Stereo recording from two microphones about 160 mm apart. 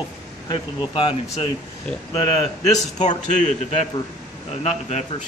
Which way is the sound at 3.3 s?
50° left (ahead or behind).